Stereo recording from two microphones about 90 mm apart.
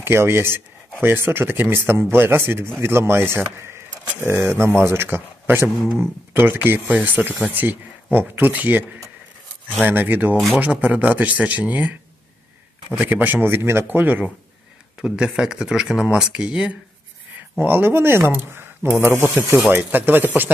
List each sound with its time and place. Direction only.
0.0 s speech: 25° right (ahead or behind)
5.8 s speech: 5° left (ahead or behind)
6.4 s speech: 25° right (ahead or behind)
15.0 s speech: 10° right (ahead or behind)
17.6 s speech: 25° right (ahead or behind)